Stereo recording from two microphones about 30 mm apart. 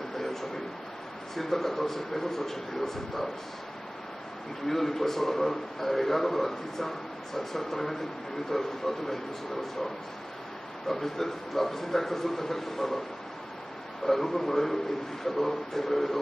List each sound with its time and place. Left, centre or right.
1.3 s a man's voice: centre
4.6 s a man's voice: centre
11.0 s a man's voice: centre
11.5 s a man's voice: centre
14.0 s a man's voice: centre